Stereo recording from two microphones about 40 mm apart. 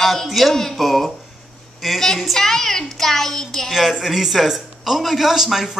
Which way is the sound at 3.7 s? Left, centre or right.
Centre.